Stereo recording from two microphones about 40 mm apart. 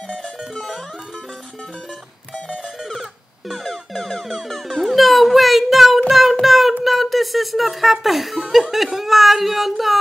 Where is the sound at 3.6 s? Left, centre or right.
Centre.